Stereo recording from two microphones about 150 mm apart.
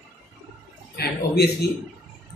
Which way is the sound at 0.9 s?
90° left.